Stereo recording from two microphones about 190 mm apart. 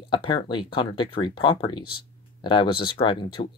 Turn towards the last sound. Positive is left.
turn(degrees=25)  # may be behind; listen again after turning